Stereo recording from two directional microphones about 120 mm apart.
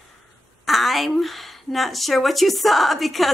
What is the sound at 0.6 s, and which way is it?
Speech, centre (ahead or behind).